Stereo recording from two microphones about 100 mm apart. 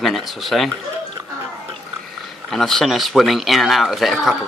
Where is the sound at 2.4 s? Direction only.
5° left (ahead or behind).